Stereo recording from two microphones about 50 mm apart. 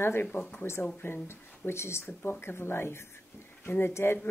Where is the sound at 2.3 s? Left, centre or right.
Left.